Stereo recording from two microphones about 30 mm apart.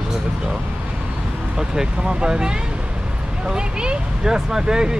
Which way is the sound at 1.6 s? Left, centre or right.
Right.